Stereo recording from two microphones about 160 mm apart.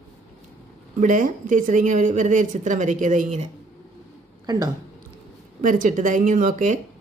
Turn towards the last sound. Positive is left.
turn(degrees=-55)  # may be behind; listen again after turning